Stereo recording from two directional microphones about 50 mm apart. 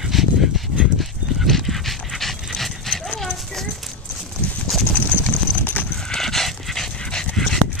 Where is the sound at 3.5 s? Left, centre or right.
Centre.